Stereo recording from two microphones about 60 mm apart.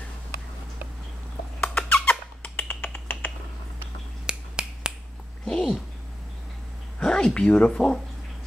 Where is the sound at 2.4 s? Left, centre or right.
Left.